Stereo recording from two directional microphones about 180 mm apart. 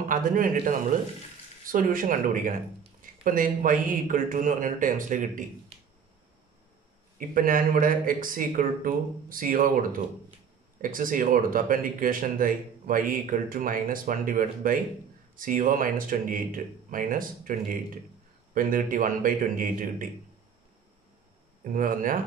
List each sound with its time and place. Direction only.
0.1 s speech: 50° right (ahead or behind)
7.2 s speech: 50° right (ahead or behind)
21.7 s speech: 50° right (ahead or behind)